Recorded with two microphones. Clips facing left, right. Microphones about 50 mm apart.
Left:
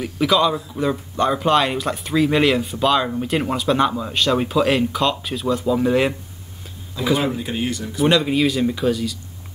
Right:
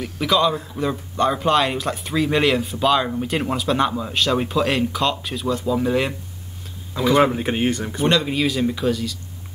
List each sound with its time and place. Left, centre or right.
0.0 s speech: centre
7.3 s speech: right
8.0 s speech: centre